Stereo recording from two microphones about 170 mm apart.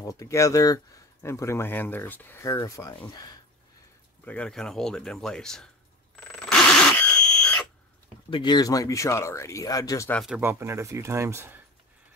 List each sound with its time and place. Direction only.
0.0 s speech: 20° left (ahead or behind)
4.2 s speech: 5° left (ahead or behind)
6.3 s a sound: 5° left (ahead or behind)
8.3 s speech: 25° left (ahead or behind)
10.1 s speech: centre (ahead or behind)
10.4 s speech: 15° right (ahead or behind)